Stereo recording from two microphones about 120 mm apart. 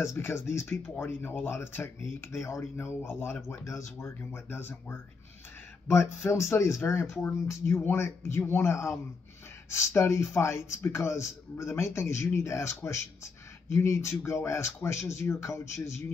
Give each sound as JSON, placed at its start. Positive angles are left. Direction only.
{"t": 0.0, "sound": "speech", "side_deg": 20}